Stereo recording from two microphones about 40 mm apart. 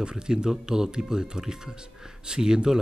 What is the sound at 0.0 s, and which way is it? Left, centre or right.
A man's voice, centre.